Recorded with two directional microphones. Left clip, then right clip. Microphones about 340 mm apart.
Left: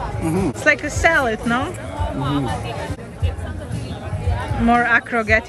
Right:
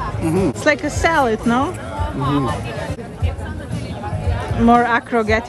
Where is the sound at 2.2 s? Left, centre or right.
Centre.